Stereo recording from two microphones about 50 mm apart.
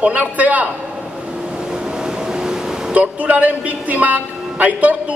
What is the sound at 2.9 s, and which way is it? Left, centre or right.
A man's voice, right.